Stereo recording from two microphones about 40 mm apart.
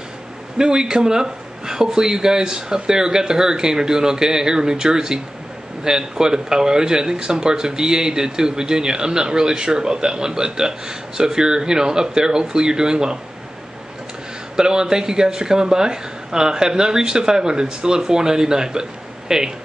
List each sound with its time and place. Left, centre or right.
0.6 s speech: centre
14.6 s speech: centre